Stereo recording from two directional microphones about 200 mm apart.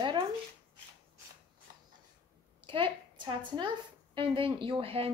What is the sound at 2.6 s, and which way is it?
A woman's voice, 25° right (ahead or behind).